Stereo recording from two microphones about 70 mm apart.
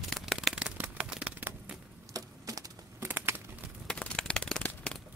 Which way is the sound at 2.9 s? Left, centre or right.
Right.